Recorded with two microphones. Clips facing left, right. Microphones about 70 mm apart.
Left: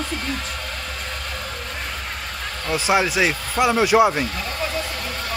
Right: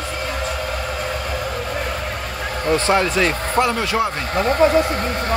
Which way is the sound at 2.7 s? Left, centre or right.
Centre.